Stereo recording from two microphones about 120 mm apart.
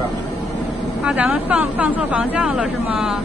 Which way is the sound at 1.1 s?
10° right (ahead or behind).